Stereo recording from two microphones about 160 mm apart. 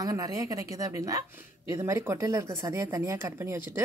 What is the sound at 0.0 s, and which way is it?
A woman's voice, 20° right (ahead or behind).